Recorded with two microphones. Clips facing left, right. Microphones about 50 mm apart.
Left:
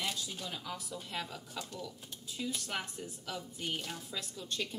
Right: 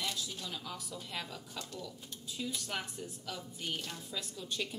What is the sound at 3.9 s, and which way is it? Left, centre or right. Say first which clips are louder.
Cutlery: even; centre.